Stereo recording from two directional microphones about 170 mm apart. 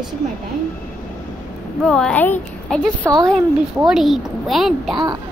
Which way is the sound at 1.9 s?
5° left (ahead or behind).